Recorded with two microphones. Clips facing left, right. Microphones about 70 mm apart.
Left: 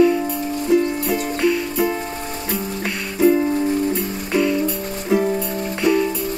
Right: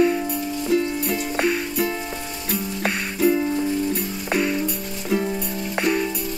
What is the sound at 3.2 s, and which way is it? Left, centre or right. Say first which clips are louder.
Music: left 4 dB; centre.